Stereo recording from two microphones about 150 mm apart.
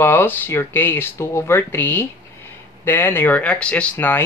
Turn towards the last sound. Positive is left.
turn(degrees=15)  # may be behind; listen again after turning